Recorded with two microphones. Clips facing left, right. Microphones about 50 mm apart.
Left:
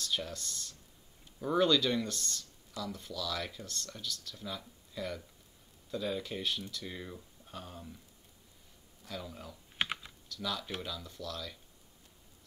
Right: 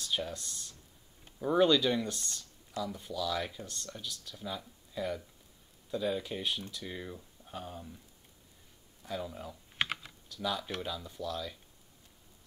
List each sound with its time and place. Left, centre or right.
0.0 s speech: centre
9.0 s speech: centre
9.8 s typing: centre
10.2 s speech: centre